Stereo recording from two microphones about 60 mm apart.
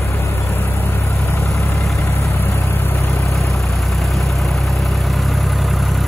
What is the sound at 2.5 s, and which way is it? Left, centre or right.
Vehicle, left.